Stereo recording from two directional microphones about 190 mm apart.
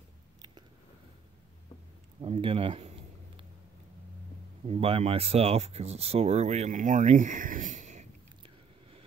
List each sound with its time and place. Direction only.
2.2 s speech: 30° right (ahead or behind)
4.6 s speech: 30° right (ahead or behind)